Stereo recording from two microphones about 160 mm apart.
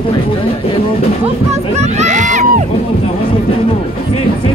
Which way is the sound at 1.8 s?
45° right (ahead or behind).